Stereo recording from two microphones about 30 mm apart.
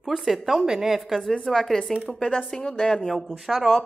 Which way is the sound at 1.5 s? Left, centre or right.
Centre.